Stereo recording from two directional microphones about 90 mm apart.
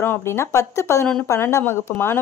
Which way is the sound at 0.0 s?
25° left (ahead or behind).